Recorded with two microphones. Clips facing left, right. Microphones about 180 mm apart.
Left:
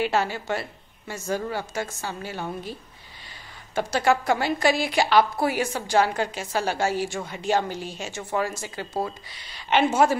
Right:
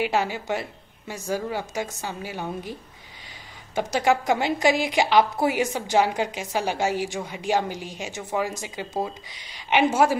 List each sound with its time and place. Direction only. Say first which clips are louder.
0.0 s a woman's voice: even; 15° right (ahead or behind)